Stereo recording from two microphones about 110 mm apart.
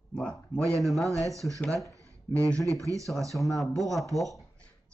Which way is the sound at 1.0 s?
30° right (ahead or behind).